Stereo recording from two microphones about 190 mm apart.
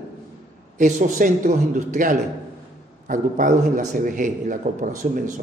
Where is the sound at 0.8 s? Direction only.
40° right (ahead or behind).